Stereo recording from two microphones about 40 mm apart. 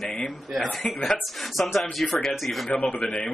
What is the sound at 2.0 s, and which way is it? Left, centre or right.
Speech, centre.